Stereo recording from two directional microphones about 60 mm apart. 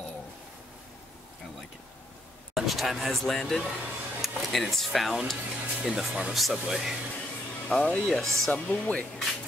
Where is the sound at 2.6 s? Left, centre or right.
Centre.